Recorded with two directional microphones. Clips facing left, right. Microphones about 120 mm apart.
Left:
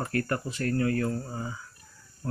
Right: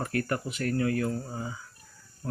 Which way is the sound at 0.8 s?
20° right (ahead or behind).